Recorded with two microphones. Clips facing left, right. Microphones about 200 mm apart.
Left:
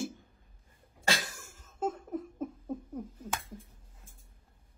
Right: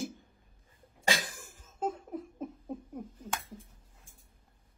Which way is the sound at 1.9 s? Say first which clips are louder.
Left 1 dB; 10° right (ahead or behind).